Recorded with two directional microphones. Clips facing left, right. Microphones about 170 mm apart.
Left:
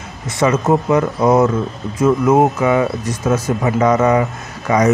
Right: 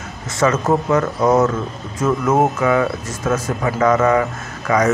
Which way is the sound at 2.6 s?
20° left (ahead or behind).